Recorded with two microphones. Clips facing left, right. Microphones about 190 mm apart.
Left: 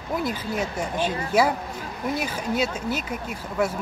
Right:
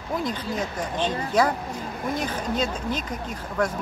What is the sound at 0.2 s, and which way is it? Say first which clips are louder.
Speech: left 1 dB; 5° left (ahead or behind).